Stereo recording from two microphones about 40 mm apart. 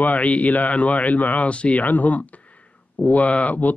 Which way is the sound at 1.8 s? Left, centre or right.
Left.